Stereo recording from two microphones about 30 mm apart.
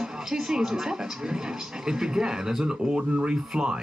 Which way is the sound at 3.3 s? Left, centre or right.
Centre.